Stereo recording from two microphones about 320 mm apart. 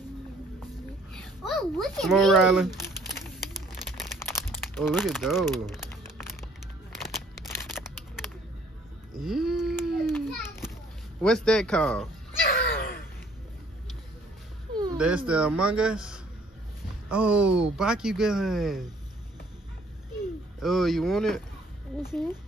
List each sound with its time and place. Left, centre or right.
1.5 s crumpling: centre
7.4 s a sound: centre
9.2 s children playing: centre
11.2 s speech: centre
12.4 s a sound: left
15.0 s speech: centre
20.6 s speech: centre